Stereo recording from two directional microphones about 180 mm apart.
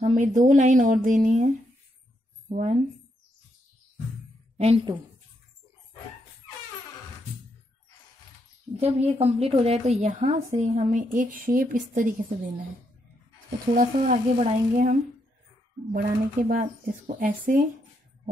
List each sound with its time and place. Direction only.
0.0 s speech: 45° right (ahead or behind)
2.5 s a woman's voice: 40° right (ahead or behind)
4.6 s a woman's voice: 35° right (ahead or behind)
8.7 s a woman's voice: 35° right (ahead or behind)
13.7 s speech: 50° right (ahead or behind)
15.9 s speech: 50° right (ahead or behind)